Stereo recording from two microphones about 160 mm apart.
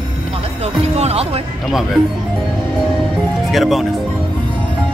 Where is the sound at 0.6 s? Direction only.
40° right (ahead or behind).